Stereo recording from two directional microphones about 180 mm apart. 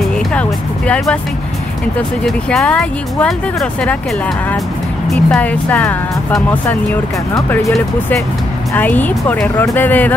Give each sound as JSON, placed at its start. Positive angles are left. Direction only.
{"t": 0.3, "sound": "music", "side_deg": 5}
{"t": 2.2, "sound": "speech", "side_deg": 5}
{"t": 5.1, "sound": "speech", "side_deg": 5}
{"t": 8.7, "sound": "speech", "side_deg": 10}